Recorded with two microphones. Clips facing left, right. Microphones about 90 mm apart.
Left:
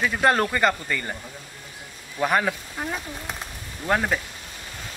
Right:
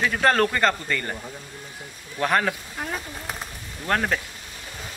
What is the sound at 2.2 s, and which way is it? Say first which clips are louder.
A man's voice: even; 5° left (ahead or behind).